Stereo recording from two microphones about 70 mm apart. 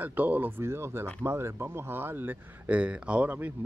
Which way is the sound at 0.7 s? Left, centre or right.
Right.